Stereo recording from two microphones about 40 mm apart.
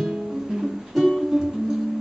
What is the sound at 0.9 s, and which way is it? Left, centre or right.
Music, centre.